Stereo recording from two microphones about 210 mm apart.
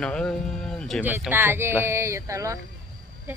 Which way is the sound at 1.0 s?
10° right (ahead or behind).